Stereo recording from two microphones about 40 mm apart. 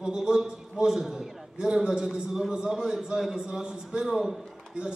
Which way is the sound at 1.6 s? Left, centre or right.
Right.